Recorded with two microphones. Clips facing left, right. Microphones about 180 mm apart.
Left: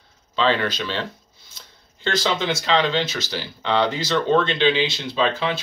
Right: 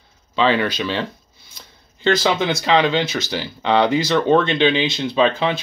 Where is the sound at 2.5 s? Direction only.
15° right (ahead or behind).